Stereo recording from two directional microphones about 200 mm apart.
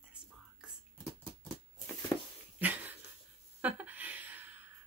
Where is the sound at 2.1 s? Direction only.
15° left (ahead or behind).